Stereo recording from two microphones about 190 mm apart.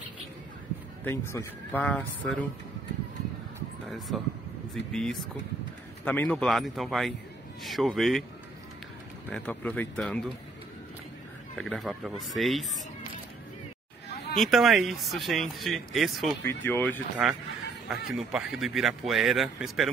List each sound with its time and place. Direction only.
1.0 s speech: 15° left (ahead or behind)
3.8 s speech: centre (ahead or behind)
9.3 s speech: 5° left (ahead or behind)
11.5 s speech: centre (ahead or behind)
14.3 s speech: centre (ahead or behind)
16.4 s speech: 10° left (ahead or behind)
17.2 s speech: 5° right (ahead or behind)